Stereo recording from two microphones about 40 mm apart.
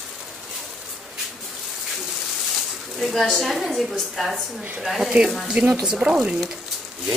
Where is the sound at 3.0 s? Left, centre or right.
Centre.